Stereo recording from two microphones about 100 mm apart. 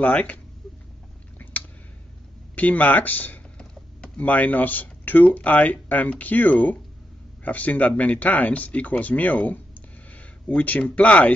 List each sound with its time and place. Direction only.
0.0 s speech: 15° left (ahead or behind)
1.4 s a sound: 15° left (ahead or behind)
2.5 s speech: 15° left (ahead or behind)